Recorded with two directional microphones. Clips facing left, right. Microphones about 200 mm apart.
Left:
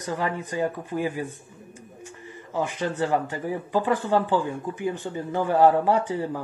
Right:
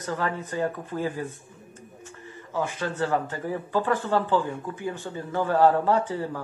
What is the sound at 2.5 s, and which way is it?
Speech, 15° left (ahead or behind).